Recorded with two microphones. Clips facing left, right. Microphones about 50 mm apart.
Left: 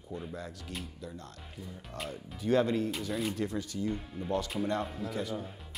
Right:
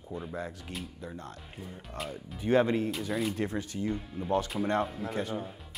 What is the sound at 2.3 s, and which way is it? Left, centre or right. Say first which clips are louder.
Speech: right 2 dB; right.